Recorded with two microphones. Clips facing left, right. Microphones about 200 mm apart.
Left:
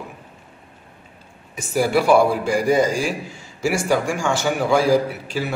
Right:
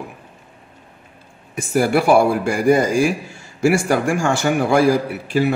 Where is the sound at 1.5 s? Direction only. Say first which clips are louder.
Right 2 dB; 55° right (ahead or behind).